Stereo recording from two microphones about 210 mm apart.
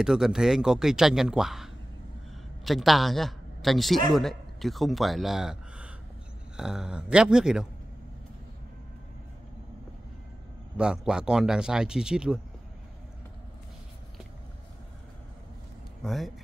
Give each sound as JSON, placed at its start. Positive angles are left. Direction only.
{"t": 0.0, "sound": "a woman's voice", "side_deg": -5}
{"t": 10.8, "sound": "speech", "side_deg": -5}
{"t": 16.0, "sound": "speech", "side_deg": 0}